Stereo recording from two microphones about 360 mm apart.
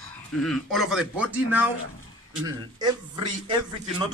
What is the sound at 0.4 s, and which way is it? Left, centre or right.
A man's voice, centre.